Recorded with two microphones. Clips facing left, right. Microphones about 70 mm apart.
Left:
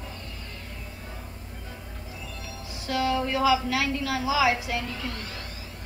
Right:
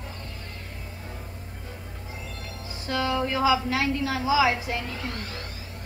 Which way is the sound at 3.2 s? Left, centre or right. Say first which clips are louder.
Right 2 dB; right.